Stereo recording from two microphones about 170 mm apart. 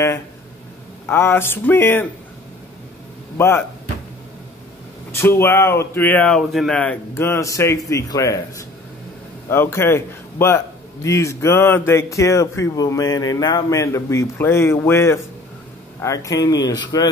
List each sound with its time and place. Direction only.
1.0 s a man's voice: 15° left (ahead or behind)
3.3 s a man's voice: 15° left (ahead or behind)
5.1 s a man's voice: 15° left (ahead or behind)